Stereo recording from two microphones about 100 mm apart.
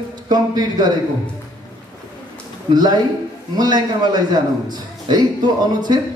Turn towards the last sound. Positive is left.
turn(degrees=-45)  # may be behind; listen again after turning